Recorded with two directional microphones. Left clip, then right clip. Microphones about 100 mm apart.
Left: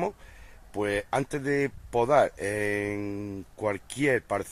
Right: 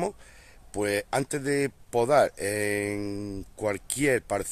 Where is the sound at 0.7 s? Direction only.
20° right (ahead or behind).